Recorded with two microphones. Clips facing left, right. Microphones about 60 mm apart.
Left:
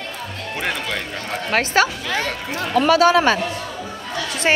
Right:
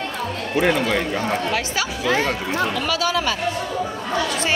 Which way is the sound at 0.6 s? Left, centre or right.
Centre.